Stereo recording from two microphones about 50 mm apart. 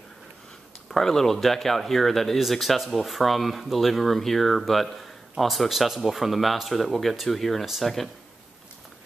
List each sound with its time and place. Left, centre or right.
0.8 s speech: centre